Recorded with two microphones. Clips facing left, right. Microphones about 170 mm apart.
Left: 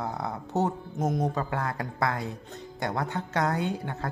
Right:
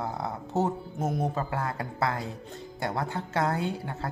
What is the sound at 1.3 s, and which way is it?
Speech, 30° right (ahead or behind).